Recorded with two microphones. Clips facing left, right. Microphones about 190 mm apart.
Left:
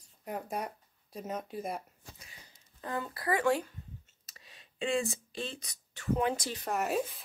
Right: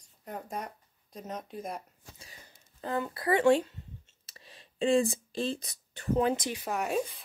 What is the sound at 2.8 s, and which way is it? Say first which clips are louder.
Speech: right 4 dB; 25° right (ahead or behind).